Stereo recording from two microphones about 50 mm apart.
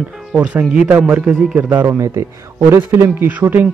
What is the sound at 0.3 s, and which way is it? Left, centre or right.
Speech, right.